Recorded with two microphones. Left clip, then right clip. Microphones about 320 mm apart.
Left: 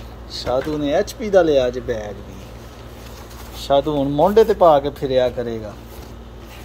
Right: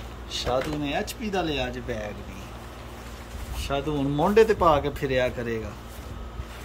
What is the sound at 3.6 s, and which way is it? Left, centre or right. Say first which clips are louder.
Speech: left 11 dB; centre.